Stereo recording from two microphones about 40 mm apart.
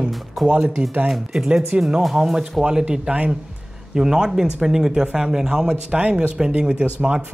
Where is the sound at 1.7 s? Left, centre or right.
Right.